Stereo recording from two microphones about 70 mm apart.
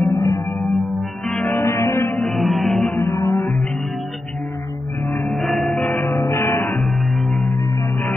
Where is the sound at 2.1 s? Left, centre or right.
Centre.